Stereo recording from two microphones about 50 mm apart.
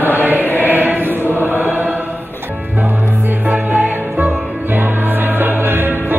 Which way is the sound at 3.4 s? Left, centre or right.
Right.